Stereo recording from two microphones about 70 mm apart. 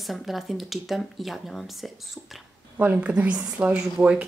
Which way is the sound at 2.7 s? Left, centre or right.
Right.